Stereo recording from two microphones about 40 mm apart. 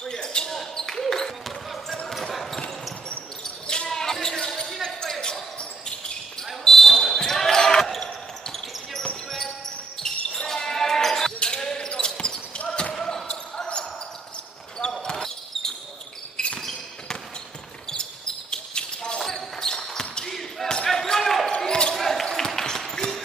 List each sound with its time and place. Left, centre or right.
0.0 s basketball bounce: centre
0.5 s basketball bounce: centre
3.6 s basketball bounce: left
3.9 s basketball bounce: centre
6.6 s basketball bounce: centre
10.0 s basketball bounce: centre
11.3 s basketball bounce: centre
14.8 s basketball bounce: left
16.4 s basketball bounce: centre
17.8 s basketball bounce: centre
21.5 s basketball bounce: centre
21.9 s basketball bounce: centre
22.2 s basketball bounce: centre